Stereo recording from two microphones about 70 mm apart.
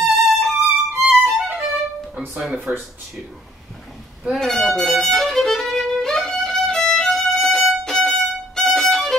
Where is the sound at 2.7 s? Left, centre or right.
Right.